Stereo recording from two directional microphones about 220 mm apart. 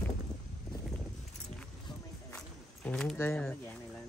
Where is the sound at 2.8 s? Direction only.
5° left (ahead or behind).